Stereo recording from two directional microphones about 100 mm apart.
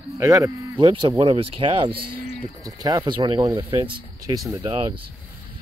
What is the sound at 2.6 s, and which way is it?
Speech, 40° right (ahead or behind).